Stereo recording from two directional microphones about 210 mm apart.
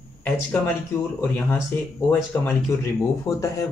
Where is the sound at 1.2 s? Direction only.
10° left (ahead or behind).